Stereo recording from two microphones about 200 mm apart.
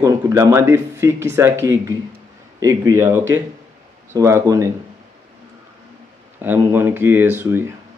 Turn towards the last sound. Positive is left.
turn(degrees=-10)  # may be behind; listen again after turning